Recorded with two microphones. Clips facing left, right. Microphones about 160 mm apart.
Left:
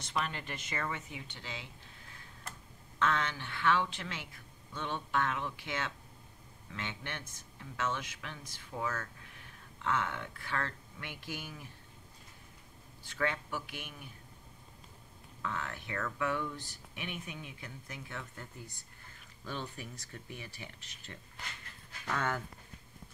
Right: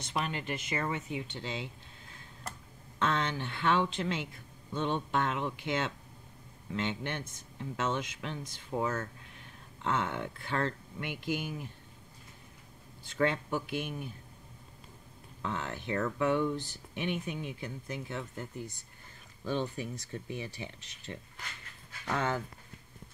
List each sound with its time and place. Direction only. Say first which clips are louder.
0.1 s speech: right 3 dB; 20° right (ahead or behind)
3.0 s speech: right 2 dB; 30° right (ahead or behind)
13.2 s speech: right 5 dB; 25° right (ahead or behind)
15.4 s speech: right 4 dB; 25° right (ahead or behind)